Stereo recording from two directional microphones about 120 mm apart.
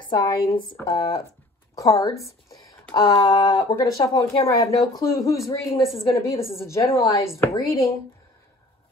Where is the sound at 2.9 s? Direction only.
35° left (ahead or behind).